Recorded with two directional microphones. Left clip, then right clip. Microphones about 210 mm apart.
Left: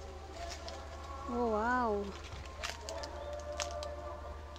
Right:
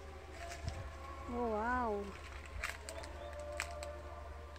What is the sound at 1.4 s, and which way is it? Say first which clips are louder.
Speech: left 4 dB; 5° left (ahead or behind).